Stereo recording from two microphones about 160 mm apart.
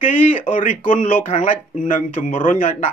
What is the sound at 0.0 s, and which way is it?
Speech, 55° left (ahead or behind).